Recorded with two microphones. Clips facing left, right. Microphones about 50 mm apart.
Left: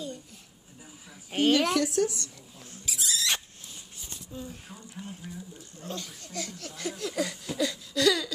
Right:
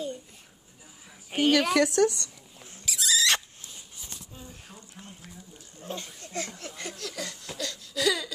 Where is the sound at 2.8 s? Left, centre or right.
Right.